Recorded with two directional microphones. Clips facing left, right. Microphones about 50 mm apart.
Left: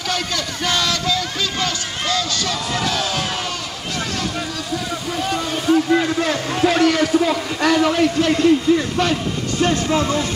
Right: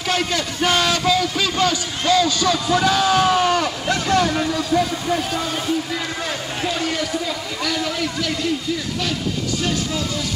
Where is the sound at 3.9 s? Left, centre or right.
Right.